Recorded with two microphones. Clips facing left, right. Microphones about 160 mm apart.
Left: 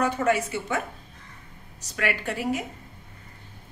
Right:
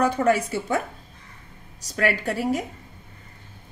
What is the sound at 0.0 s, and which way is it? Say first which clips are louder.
Speech: right 3 dB; 35° right (ahead or behind).